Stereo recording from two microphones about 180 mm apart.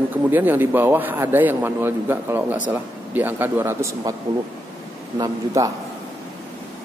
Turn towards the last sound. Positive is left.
turn(degrees=-20)  # may be behind; listen again after turning